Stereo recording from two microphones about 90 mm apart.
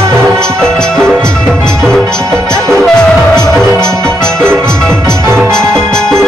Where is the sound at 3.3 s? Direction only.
5° left (ahead or behind).